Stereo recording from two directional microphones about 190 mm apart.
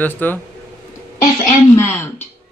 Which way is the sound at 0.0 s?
10° left (ahead or behind).